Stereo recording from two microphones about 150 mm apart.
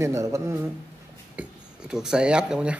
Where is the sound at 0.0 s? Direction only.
20° right (ahead or behind).